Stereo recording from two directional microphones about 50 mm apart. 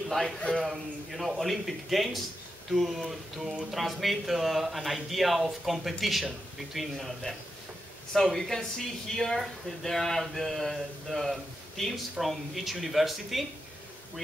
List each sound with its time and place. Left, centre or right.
0.4 s a man's voice: centre
0.7 s speech: centre